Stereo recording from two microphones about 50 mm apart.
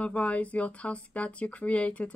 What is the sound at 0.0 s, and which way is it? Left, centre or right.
Speech, left.